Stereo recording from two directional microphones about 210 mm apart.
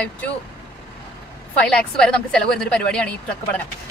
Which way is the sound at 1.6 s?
5° left (ahead or behind).